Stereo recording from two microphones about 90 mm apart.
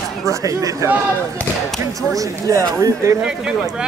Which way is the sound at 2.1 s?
40° right (ahead or behind).